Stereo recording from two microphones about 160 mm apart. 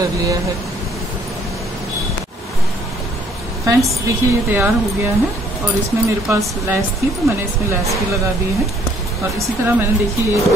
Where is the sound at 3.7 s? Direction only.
20° right (ahead or behind).